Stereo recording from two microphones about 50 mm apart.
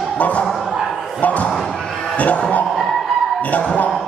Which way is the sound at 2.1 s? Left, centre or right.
Left.